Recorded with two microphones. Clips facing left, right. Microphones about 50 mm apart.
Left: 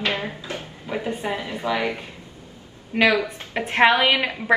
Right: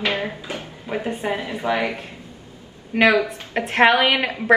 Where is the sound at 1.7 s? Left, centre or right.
Right.